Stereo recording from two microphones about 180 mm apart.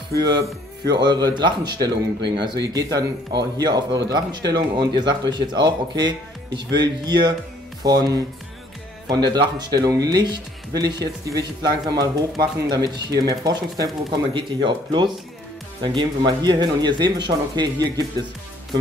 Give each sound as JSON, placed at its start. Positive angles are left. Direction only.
{"t": 0.2, "sound": "speech", "side_deg": -25}